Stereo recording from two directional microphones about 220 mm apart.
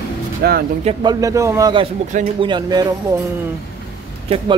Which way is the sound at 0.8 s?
15° right (ahead or behind).